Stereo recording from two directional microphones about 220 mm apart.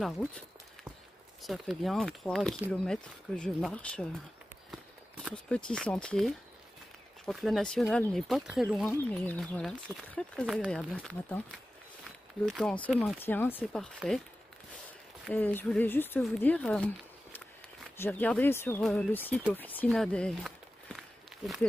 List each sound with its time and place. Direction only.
1.4 s speech: centre (ahead or behind)
5.2 s speech: 5° left (ahead or behind)
15.2 s speech: 5° left (ahead or behind)